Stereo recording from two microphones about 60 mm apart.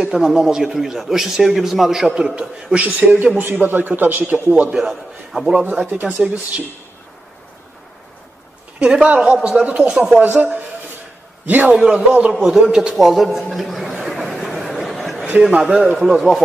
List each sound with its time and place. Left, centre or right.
0.0 s a man's voice: centre
2.0 s a man's voice: centre
4.6 s a man's voice: centre
5.5 s a man's voice: centre
5.9 s a man's voice: right
8.7 s a woman's voice: centre
9.9 s a man's voice: centre
10.2 s a man's voice: right
11.7 s a man's voice: centre
12.4 s a sound: centre
15.6 s a man's voice: centre